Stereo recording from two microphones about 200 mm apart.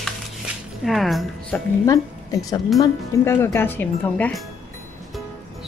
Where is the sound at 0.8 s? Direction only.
Centre (ahead or behind).